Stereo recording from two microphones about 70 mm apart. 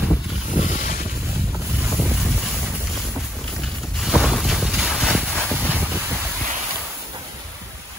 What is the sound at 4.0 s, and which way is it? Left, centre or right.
Boat, centre.